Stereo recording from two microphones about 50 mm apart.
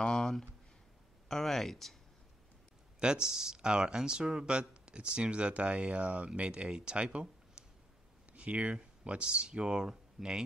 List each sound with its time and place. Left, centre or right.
0.0 s a sound: centre
1.3 s speech: centre
3.0 s speech: centre